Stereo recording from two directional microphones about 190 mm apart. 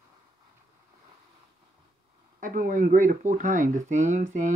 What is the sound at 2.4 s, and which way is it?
Speech, 45° right (ahead or behind).